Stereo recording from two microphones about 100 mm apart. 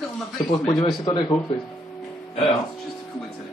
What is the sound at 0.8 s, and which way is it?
Speech, 45° left (ahead or behind).